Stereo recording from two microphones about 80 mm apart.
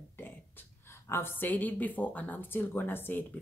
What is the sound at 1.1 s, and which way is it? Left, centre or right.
Speech, left.